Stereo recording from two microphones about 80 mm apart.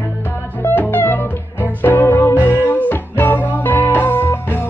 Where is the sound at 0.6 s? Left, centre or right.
Left.